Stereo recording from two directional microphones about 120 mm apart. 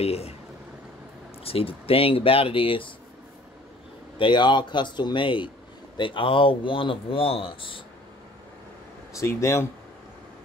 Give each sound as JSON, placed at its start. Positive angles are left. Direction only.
{"t": 0.0, "sound": "speech", "side_deg": 55}
{"t": 1.4, "sound": "speech", "side_deg": 50}
{"t": 4.2, "sound": "speech", "side_deg": 40}
{"t": 9.2, "sound": "speech", "side_deg": 25}